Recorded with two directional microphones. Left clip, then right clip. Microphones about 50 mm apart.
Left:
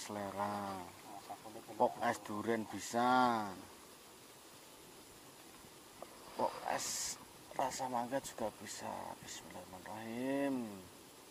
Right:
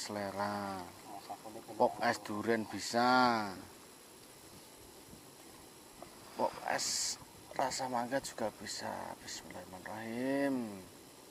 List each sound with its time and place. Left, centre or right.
0.0 s speech: centre
6.3 s a sound: right
6.6 s speech: centre